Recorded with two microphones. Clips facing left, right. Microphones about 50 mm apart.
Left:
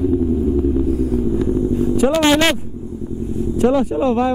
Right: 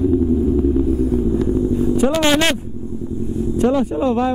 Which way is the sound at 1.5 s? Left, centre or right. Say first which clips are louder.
Even; left.